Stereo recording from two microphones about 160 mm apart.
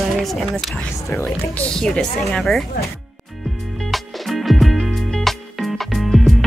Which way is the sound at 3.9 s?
Centre (ahead or behind).